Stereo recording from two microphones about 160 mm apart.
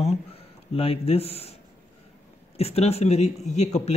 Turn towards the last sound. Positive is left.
turn(degrees=45)  # may be behind; listen again after turning